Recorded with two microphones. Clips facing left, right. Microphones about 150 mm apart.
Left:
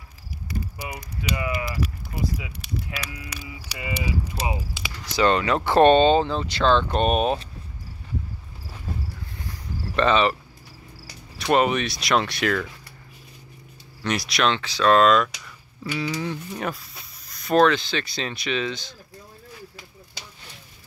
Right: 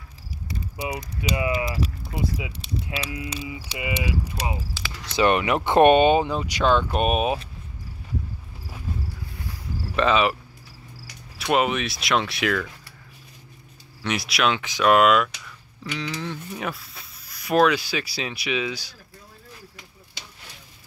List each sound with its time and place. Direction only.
0.9 s speech: 20° right (ahead or behind)
4.5 s speech: 20° left (ahead or behind)
5.0 s speech: 20° right (ahead or behind)
9.9 s speech: 5° right (ahead or behind)
11.3 s speech: 5° right (ahead or behind)
14.0 s speech: 5° right (ahead or behind)
14.6 s speech: 15° right (ahead or behind)
15.4 s music: 5° left (ahead or behind)
16.5 s speech: centre (ahead or behind)